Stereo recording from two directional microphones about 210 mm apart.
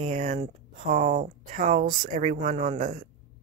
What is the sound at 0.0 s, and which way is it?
Speech, 35° right (ahead or behind).